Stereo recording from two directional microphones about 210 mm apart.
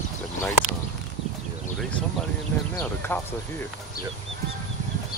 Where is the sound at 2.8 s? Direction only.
10° left (ahead or behind).